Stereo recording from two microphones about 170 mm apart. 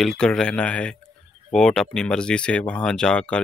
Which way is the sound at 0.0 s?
5° left (ahead or behind).